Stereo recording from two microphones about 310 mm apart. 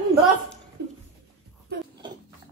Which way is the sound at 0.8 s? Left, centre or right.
Right.